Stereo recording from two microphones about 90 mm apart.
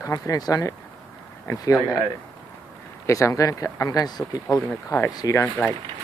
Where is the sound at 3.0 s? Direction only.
35° left (ahead or behind).